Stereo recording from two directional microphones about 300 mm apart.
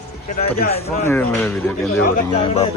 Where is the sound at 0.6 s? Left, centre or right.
Left.